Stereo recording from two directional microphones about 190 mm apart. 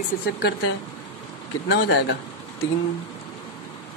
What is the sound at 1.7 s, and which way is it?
Speech, 65° left (ahead or behind).